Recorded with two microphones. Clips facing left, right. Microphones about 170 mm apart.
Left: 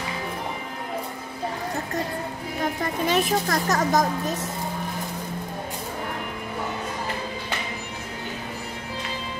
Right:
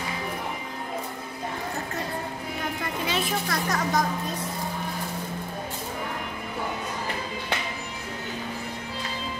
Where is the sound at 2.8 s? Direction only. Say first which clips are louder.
Left 6 dB; 45° left (ahead or behind).